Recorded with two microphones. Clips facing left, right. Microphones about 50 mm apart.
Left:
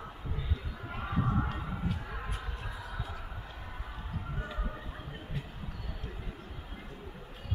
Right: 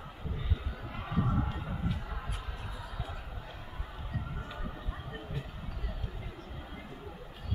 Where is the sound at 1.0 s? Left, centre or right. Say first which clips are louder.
Even; centre.